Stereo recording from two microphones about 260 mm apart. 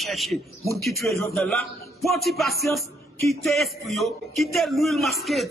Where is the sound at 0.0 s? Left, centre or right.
Centre.